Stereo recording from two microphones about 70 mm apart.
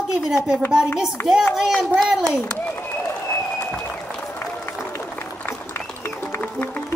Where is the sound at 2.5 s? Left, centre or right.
Left.